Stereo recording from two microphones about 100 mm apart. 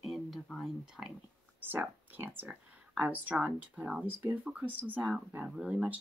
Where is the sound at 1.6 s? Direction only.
20° right (ahead or behind).